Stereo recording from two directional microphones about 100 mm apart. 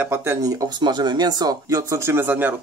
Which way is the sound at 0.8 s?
45° right (ahead or behind).